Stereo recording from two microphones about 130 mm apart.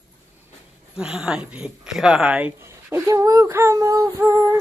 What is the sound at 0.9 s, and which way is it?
Speech, 5° right (ahead or behind).